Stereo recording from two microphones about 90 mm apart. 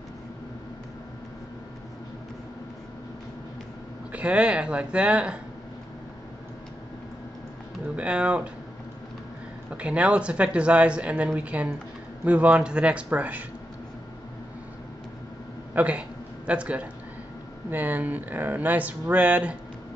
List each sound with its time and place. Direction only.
4.1 s speech: 15° right (ahead or behind)
7.9 s speech: 15° right (ahead or behind)
9.7 s speech: 15° right (ahead or behind)
15.7 s a sound: 15° right (ahead or behind)
17.6 s speech: 20° right (ahead or behind)